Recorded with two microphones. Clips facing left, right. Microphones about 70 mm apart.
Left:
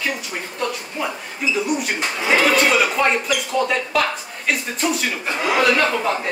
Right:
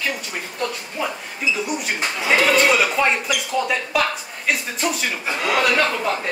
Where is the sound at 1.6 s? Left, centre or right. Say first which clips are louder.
Left 2 dB; centre.